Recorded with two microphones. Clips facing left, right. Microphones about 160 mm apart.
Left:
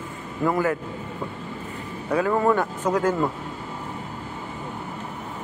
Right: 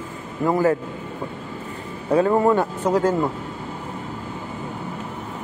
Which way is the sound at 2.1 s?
25° right (ahead or behind).